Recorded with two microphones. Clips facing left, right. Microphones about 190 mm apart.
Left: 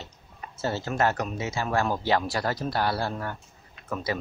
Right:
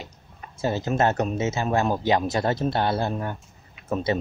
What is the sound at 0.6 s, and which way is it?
Speech, 15° right (ahead or behind).